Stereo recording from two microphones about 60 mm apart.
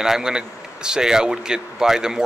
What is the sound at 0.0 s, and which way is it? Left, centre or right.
Speech, centre.